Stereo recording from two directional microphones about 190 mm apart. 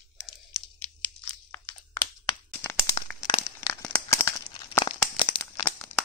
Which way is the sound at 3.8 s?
15° left (ahead or behind).